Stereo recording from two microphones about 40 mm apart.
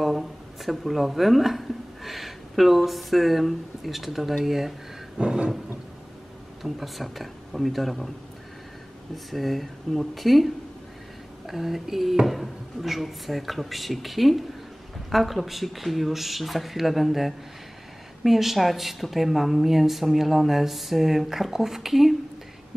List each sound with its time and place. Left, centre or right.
0.0 s speech: centre
5.2 s a sound: right
6.6 s speech: centre
9.1 s speech: centre